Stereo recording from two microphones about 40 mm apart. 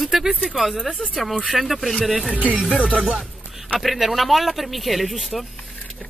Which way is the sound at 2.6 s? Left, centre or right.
Right.